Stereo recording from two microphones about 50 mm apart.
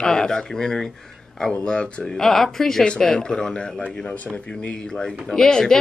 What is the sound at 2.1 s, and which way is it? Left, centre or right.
Speech, centre.